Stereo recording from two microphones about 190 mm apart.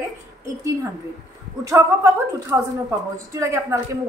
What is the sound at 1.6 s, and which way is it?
A woman's voice, 15° right (ahead or behind).